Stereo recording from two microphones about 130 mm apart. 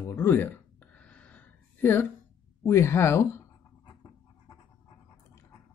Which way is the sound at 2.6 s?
20° left (ahead or behind).